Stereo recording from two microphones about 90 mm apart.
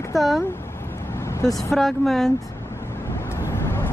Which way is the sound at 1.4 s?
40° left (ahead or behind).